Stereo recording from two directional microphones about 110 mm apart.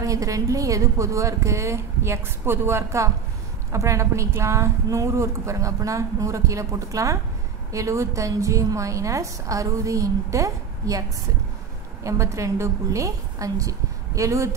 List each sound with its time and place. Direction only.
0.0 s a woman's voice: 30° right (ahead or behind)